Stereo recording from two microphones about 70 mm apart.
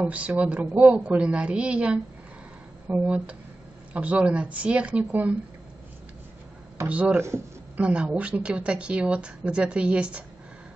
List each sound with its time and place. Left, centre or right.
0.0 s a woman's voice: centre
6.9 s speech: centre
7.2 s speech: right
7.7 s a woman's voice: centre